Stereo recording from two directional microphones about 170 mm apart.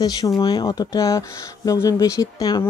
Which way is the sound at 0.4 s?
25° left (ahead or behind).